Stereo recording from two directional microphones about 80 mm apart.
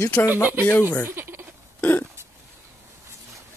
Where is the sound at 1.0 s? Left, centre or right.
Right.